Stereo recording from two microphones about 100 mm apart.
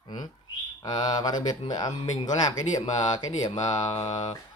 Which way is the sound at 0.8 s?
40° left (ahead or behind).